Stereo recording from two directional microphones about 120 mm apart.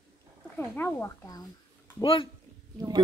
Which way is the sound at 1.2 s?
30° left (ahead or behind).